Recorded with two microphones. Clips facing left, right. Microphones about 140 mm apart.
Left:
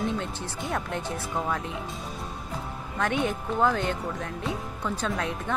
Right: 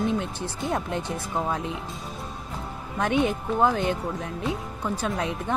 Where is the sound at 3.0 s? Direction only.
15° right (ahead or behind).